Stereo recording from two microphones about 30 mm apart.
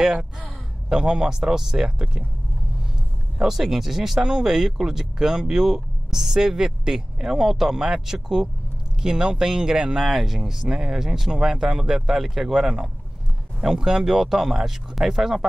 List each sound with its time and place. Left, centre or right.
0.0 s speech: right
1.3 s speech: centre
3.3 s speech: centre
4.2 s speech: right
4.5 s speech: centre
9.9 s speech: centre
12.1 s speech: centre